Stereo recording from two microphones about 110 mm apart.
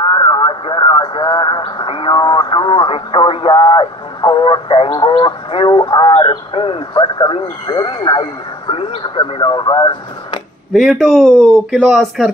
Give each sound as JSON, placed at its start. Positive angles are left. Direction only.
{"t": 0.0, "sound": "speech", "side_deg": 45}
{"t": 4.9, "sound": "speech", "side_deg": 45}
{"t": 6.9, "sound": "speech", "side_deg": 40}
{"t": 10.7, "sound": "speech", "side_deg": 0}